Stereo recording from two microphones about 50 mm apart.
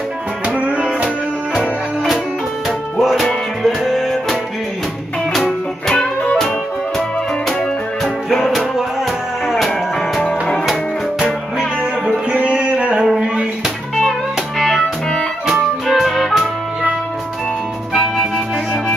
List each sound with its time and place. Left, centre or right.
0.7 s music: right
1.5 s music: centre
8.0 s music: centre
10.6 s music: centre
12.3 s music: right
14.6 s music: centre
15.4 s music: centre